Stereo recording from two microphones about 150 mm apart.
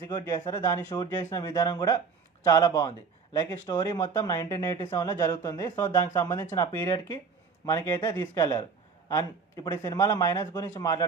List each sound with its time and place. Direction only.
0.0 s speech: 25° left (ahead or behind)